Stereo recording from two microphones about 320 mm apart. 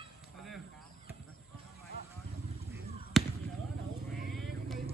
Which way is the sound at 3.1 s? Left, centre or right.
Centre.